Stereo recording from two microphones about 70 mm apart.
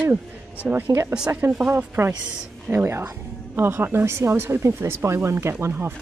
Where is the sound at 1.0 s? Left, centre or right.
Centre.